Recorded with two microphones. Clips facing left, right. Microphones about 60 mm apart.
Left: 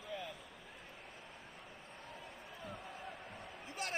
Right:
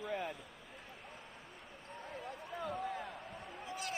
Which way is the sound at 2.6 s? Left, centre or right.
Right.